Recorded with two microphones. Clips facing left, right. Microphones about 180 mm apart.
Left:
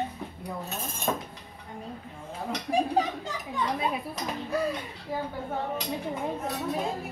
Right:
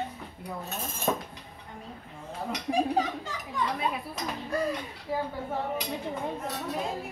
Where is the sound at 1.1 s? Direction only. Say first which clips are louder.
Right 1 dB; 5° right (ahead or behind).